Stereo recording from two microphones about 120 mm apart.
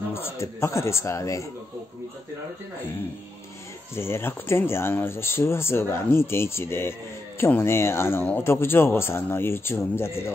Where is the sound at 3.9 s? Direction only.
20° left (ahead or behind).